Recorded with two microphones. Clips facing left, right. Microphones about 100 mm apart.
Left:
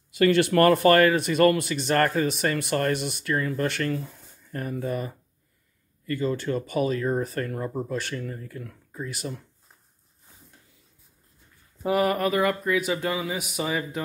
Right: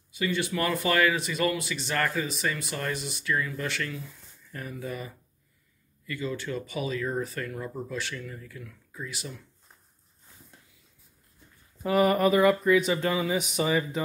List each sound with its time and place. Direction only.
0.1 s speech: 75° left (ahead or behind); by 9.4 s 45° left (ahead or behind)
12.0 s speech: centre (ahead or behind)